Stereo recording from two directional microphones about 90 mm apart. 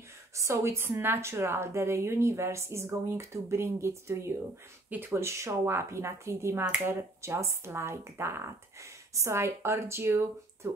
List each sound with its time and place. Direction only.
0.3 s a woman's voice: 35° right (ahead or behind)
4.8 s a woman's voice: 20° right (ahead or behind)